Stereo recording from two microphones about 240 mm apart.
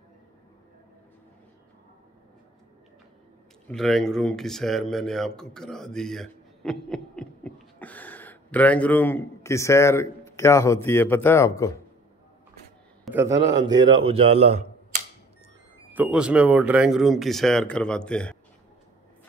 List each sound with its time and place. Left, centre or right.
3.6 s speech: centre
13.0 s a sound: centre
13.6 s speech: centre
15.9 s speech: centre